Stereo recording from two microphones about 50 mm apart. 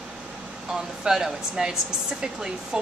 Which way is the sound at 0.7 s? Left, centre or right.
Centre.